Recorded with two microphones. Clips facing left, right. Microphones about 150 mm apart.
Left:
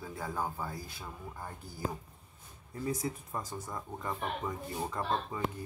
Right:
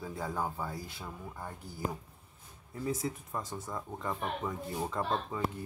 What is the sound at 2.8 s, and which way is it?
Speech, 5° right (ahead or behind).